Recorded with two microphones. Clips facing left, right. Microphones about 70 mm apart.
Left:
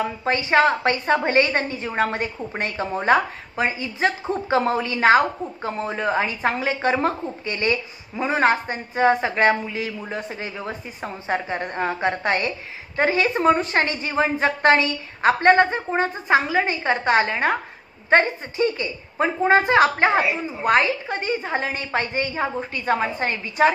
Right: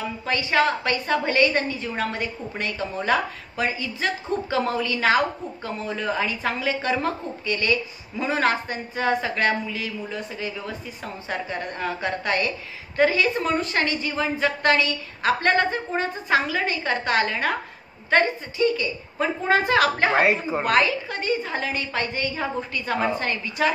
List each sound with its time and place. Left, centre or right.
0.0 s a woman's voice: left
15.5 s a woman's voice: left
20.2 s speech: right
20.6 s a woman's voice: left